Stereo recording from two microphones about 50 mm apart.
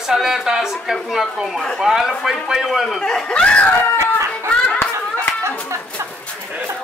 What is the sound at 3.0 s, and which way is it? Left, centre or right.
Speech, centre.